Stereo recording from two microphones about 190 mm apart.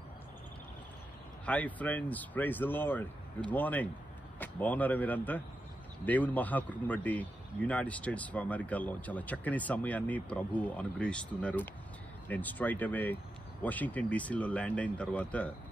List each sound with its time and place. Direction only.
1.4 s a man's voice: 5° left (ahead or behind)